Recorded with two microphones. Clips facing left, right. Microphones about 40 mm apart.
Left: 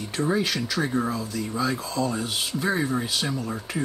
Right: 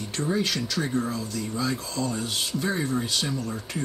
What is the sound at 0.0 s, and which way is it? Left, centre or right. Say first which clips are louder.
Speech: left 2 dB; centre.